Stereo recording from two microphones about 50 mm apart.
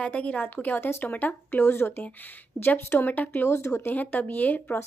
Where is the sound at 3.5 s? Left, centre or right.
Left.